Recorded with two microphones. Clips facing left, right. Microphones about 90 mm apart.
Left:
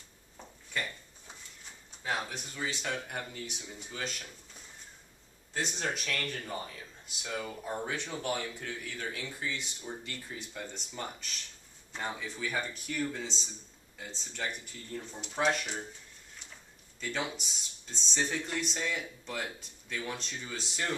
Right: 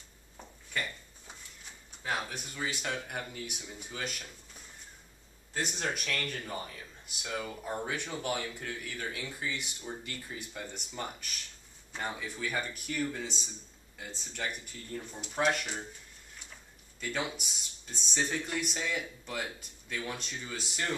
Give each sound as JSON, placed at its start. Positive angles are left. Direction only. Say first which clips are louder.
{"t": 0.4, "sound": "a sound", "louder": "even", "side_deg": -5}
{"t": 2.0, "sound": "speech", "louder": "even", "side_deg": -5}
{"t": 5.5, "sound": "speech", "louder": "even", "side_deg": -10}
{"t": 6.0, "sound": "speech", "louder": "even", "side_deg": 5}
{"t": 17.0, "sound": "speech", "louder": "even", "side_deg": -5}